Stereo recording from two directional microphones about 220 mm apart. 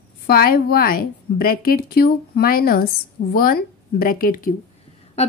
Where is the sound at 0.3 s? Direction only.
45° left (ahead or behind).